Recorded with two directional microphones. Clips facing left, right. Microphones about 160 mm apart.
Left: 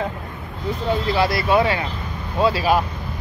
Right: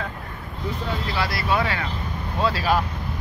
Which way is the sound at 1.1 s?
20° left (ahead or behind).